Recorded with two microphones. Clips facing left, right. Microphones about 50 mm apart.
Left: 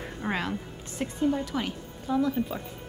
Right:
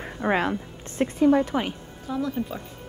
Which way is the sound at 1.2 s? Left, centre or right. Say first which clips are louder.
Right 8 dB; right.